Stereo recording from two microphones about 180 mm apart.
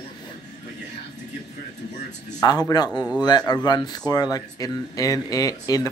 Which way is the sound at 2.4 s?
20° left (ahead or behind).